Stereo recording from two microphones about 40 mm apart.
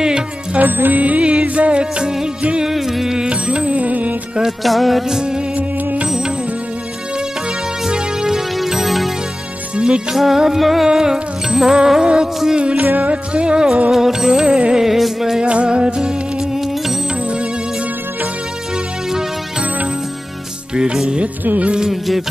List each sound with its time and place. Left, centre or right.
0.6 s music: right
2.6 s music: centre
3.3 s music: right
4.5 s music: centre
5.1 s music: centre
7.8 s music: centre
9.8 s music: right
10.1 s music: centre; by 13.7 s right
13.9 s music: centre
14.9 s music: centre
15.4 s music: right
20.7 s music: centre